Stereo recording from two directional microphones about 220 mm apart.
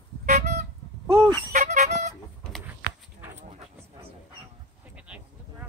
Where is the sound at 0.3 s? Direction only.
30° right (ahead or behind).